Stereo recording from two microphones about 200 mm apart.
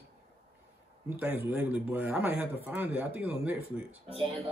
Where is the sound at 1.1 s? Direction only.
10° right (ahead or behind).